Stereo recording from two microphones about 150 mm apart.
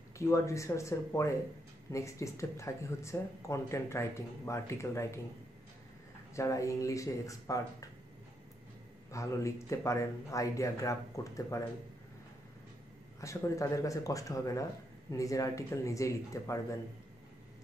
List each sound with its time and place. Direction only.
0.2 s speech: 20° left (ahead or behind)
6.3 s speech: 20° left (ahead or behind)
9.1 s speech: 20° left (ahead or behind)
13.2 s speech: 20° left (ahead or behind)